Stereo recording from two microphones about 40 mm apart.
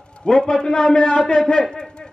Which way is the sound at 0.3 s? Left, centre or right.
Left.